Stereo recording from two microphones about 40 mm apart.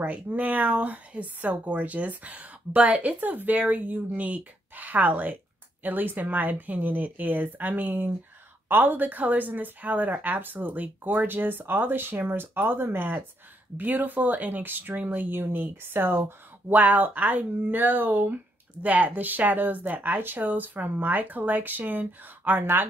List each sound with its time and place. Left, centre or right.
0.0 s speech: right
15.5 s speech: right
16.7 s speech: right